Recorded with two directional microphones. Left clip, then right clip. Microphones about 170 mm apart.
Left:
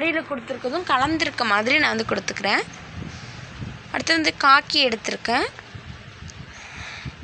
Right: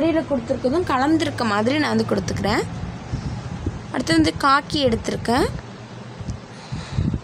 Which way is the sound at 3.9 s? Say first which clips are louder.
Right 1 dB; 10° left (ahead or behind).